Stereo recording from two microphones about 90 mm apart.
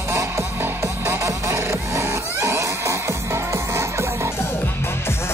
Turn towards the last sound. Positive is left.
turn(degrees=-30)  # may be behind; listen again after turning